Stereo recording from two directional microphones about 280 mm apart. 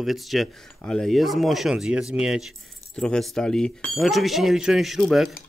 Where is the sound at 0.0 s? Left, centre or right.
Centre.